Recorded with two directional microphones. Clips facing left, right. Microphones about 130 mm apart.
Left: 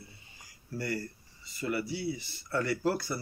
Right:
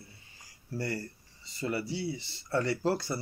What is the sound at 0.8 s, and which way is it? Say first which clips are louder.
Speech: even; 30° right (ahead or behind).